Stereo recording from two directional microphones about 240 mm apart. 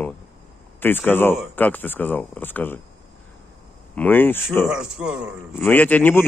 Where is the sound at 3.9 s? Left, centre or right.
Centre.